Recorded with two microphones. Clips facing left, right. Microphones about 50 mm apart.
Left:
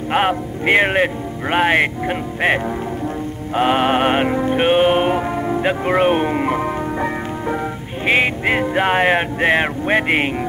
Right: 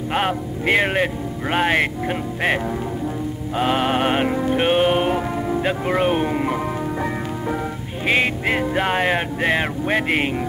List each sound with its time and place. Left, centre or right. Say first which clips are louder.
0.1 s speech: left 5 dB; centre
3.5 s music: left 4 dB; centre
8.1 s speech: left 3 dB; centre